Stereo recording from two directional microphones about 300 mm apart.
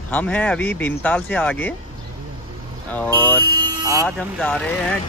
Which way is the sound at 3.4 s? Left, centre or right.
Centre.